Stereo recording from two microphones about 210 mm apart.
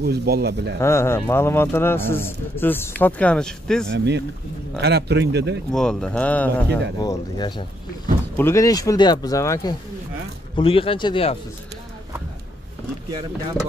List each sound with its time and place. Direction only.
0.0 s speech: 50° right (ahead or behind)
0.7 s a man's voice: 10° left (ahead or behind)
3.9 s speech: 55° right (ahead or behind)
5.7 s speech: 5° left (ahead or behind)
7.0 s a man's voice: 20° left (ahead or behind)